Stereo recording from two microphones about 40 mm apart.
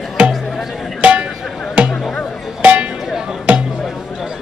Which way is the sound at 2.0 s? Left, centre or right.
Centre.